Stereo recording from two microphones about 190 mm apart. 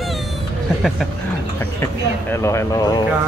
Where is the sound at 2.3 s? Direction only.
15° left (ahead or behind).